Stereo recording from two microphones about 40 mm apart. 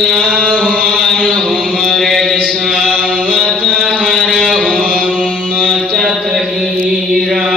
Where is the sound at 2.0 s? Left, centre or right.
Centre.